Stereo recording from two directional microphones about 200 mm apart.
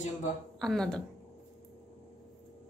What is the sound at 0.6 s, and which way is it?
Speech, centre (ahead or behind).